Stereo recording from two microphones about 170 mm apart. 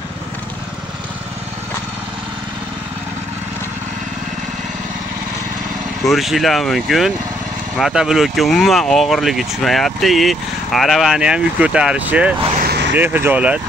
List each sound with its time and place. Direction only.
6.0 s speech: centre (ahead or behind)
12.5 s vehicle: 70° right (ahead or behind)
12.9 s speech: 10° right (ahead or behind)